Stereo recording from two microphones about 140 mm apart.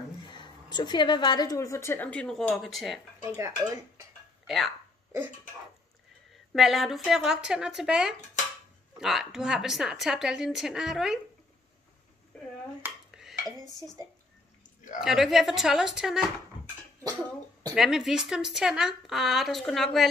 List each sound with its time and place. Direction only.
0.3 s a woman's voice: 35° left (ahead or behind); by 3.0 s centre (ahead or behind)
3.2 s dishes: 20° right (ahead or behind)
4.5 s speech: centre (ahead or behind)
6.3 s speech: centre (ahead or behind)
12.8 s dishes: 5° right (ahead or behind)
13.7 s a woman's voice: 30° left (ahead or behind)
15.0 s speech: centre (ahead or behind)
17.7 s speech: centre (ahead or behind)